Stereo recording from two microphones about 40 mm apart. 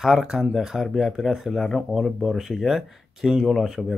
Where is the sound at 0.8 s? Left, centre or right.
Centre.